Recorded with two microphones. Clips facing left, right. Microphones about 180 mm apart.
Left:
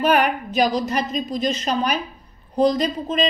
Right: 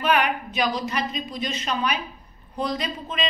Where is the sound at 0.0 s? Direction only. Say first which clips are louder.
Left 4 dB; 40° left (ahead or behind).